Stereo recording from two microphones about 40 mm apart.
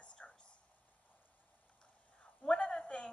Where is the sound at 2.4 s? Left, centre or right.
Left.